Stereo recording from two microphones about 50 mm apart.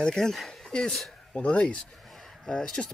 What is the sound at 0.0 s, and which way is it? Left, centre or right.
Speech, centre.